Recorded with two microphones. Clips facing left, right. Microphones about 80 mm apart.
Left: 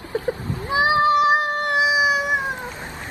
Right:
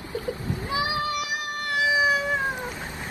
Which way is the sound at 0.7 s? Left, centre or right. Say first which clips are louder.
Left 11 dB; left.